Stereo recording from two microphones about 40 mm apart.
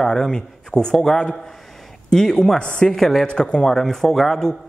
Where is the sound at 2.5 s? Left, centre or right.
Left.